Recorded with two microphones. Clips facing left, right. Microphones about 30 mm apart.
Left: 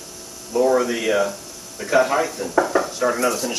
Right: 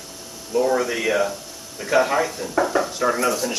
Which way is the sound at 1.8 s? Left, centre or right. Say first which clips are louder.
Left 1 dB; centre.